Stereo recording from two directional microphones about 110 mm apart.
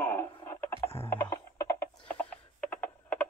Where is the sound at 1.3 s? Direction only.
30° left (ahead or behind).